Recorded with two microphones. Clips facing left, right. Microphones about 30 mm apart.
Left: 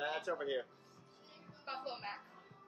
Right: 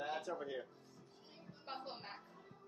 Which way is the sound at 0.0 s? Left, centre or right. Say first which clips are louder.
Left 4 dB; left.